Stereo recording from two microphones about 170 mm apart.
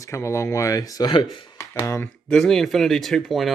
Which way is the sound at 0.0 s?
15° left (ahead or behind).